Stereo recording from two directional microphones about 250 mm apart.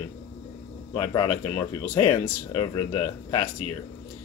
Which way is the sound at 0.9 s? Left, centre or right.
Centre.